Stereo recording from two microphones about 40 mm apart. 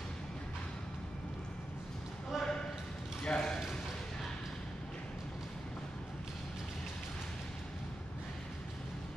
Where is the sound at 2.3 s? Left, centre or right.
Centre.